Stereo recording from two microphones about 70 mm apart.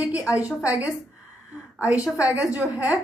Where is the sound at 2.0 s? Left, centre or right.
Centre.